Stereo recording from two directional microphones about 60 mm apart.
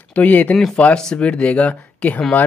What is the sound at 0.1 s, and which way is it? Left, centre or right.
Speech, left.